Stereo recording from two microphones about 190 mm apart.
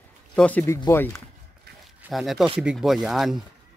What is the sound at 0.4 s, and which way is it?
Speech, 10° left (ahead or behind).